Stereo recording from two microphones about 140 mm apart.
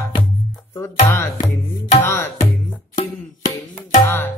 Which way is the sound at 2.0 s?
15° left (ahead or behind).